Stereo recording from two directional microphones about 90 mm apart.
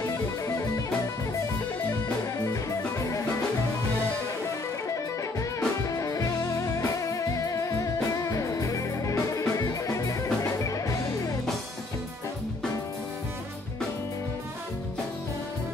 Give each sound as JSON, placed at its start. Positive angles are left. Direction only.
{"t": 2.3, "sound": "music", "side_deg": 35}
{"t": 5.9, "sound": "music", "side_deg": 40}